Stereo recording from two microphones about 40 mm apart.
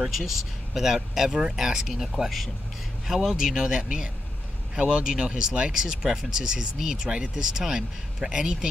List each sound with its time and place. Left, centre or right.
0.0 s speech: centre
3.3 s speech: centre